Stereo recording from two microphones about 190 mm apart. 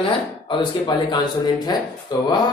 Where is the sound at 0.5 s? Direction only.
25° left (ahead or behind).